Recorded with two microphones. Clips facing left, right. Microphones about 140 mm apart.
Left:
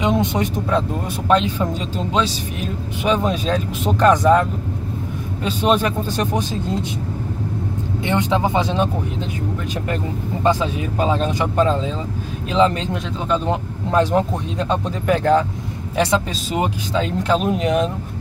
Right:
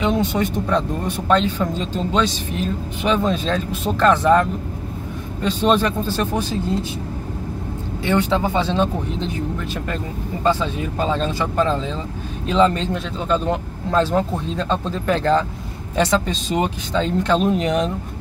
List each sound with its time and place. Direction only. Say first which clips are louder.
0.0 s speech: even; 20° left (ahead or behind)
0.7 s speech: even; 10° left (ahead or behind)
8.0 s speech: even; 20° left (ahead or behind)
10.4 s speech: left 1 dB; 15° left (ahead or behind)